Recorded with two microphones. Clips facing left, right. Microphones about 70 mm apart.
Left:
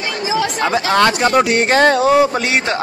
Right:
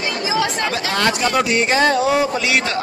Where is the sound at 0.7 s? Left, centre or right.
Left.